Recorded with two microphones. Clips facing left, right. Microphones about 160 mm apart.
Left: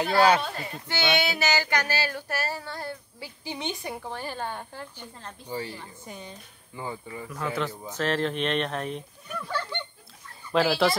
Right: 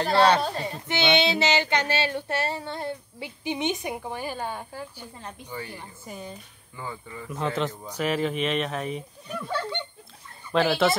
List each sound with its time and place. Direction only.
0.4 s speech: 35° right (ahead or behind)
0.8 s child singing: 25° right (ahead or behind)
6.0 s speech: 5° right (ahead or behind)
6.8 s speech: 20° left (ahead or behind)
7.2 s child singing: 25° right (ahead or behind)
7.9 s speech: 10° right (ahead or behind)
9.3 s child singing: 20° right (ahead or behind)
10.5 s speech: centre (ahead or behind)